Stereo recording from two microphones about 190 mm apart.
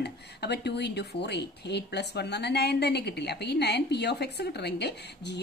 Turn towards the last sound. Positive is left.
turn(degrees=65)  # may be behind; listen again after turning